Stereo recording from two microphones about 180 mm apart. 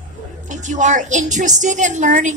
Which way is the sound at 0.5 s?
45° right (ahead or behind).